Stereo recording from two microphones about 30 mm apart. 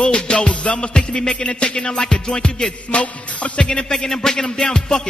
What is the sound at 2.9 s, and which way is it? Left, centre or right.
Music, left.